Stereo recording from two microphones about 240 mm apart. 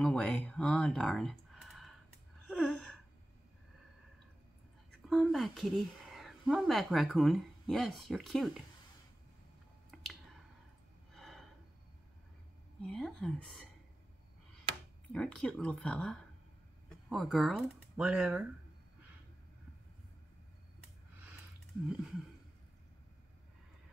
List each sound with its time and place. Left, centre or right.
0.0 s speech: centre
2.4 s gasp: centre
5.1 s speech: centre
11.1 s gasp: centre
12.8 s speech: centre
15.1 s speech: centre